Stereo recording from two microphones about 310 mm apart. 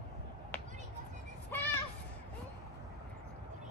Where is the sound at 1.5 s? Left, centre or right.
Centre.